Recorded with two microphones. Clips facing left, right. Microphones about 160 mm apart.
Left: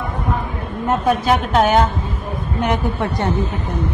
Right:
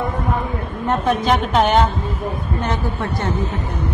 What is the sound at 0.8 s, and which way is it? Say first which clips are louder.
A woman's voice: left 1 dB; 5° left (ahead or behind).